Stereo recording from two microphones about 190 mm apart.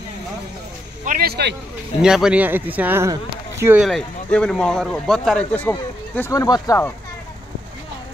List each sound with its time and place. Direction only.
1.0 s speech: 50° right (ahead or behind)
2.0 s speech: 5° right (ahead or behind)
3.8 s speech: 5° left (ahead or behind)